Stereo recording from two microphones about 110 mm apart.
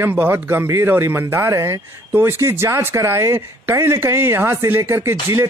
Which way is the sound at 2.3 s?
25° right (ahead or behind).